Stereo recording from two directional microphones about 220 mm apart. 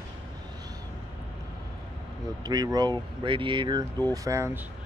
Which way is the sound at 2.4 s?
20° right (ahead or behind).